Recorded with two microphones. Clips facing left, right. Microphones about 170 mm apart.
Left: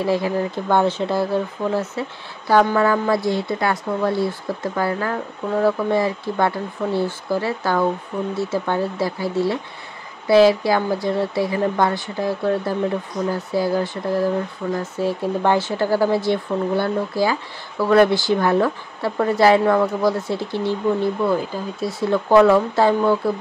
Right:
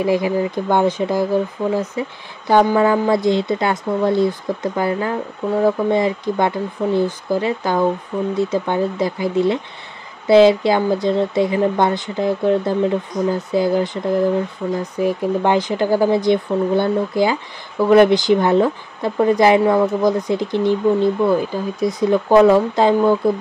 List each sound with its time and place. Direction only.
0.0 s speech: 15° right (ahead or behind)
21.7 s speech: 15° right (ahead or behind)